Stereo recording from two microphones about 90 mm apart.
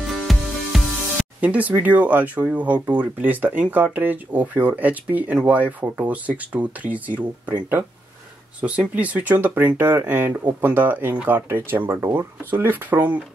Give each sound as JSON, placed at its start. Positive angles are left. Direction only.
{"t": 0.1, "sound": "music", "side_deg": 0}
{"t": 1.4, "sound": "speech", "side_deg": -15}
{"t": 8.5, "sound": "speech", "side_deg": -15}